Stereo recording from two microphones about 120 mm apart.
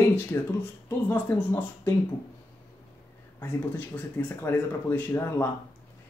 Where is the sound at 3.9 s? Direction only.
15° left (ahead or behind).